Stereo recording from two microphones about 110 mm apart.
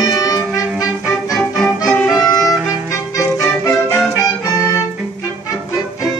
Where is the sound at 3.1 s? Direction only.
30° left (ahead or behind).